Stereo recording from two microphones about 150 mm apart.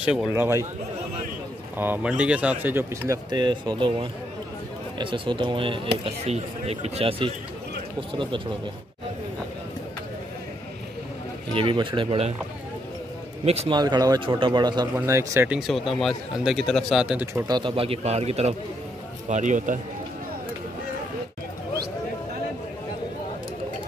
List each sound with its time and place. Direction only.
0.0 s speech: 5° right (ahead or behind)
0.3 s speech: 20° right (ahead or behind)
1.8 s speech: 10° right (ahead or behind)
3.3 s a man's voice: 30° right (ahead or behind)
6.0 s a man's voice: 45° right (ahead or behind)
11.5 s a man's voice: 35° right (ahead or behind)
13.7 s speech: 30° right (ahead or behind)
15.0 s speech: 20° right (ahead or behind)
15.5 s speech: centre (ahead or behind)
17.5 s a man's voice: 30° right (ahead or behind); by 19.8 s 60° right (ahead or behind)